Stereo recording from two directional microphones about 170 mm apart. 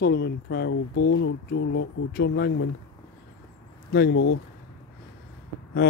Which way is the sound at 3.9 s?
75° left (ahead or behind).